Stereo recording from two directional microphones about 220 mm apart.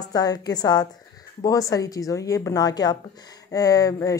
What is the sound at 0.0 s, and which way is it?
A woman's voice, 15° left (ahead or behind).